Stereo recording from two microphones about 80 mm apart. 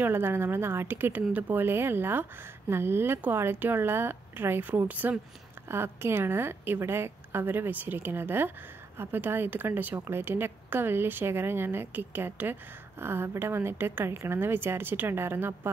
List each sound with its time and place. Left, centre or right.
0.0 s a woman's voice: right